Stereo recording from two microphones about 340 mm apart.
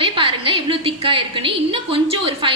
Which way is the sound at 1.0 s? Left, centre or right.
Centre.